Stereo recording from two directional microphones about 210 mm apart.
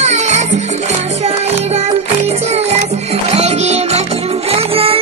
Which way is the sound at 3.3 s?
30° right (ahead or behind).